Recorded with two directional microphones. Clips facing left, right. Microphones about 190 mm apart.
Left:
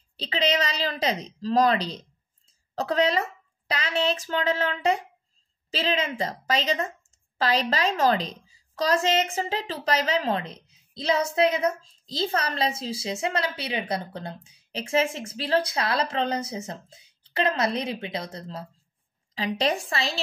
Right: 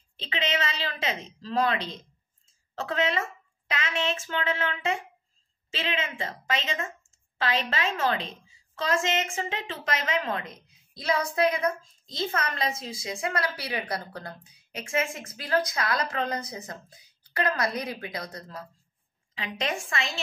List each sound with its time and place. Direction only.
0.2 s a woman's voice: 35° left (ahead or behind)